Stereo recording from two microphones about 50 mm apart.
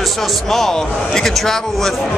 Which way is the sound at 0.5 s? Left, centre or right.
Centre.